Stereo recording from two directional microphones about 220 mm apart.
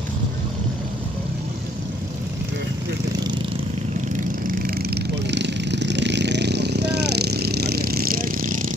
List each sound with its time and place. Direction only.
4.6 s vehicle: 45° right (ahead or behind)